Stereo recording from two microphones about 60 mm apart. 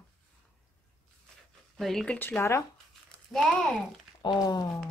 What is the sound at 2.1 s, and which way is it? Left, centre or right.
Speech, left.